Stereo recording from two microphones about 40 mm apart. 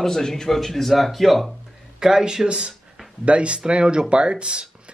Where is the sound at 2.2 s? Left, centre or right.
Centre.